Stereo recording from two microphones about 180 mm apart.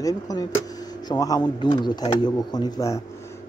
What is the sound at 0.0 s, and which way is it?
Speech, 20° left (ahead or behind).